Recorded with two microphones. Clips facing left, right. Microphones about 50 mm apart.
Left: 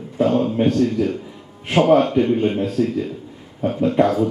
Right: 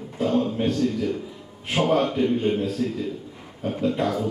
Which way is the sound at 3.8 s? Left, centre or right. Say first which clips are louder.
Left 7 dB; left.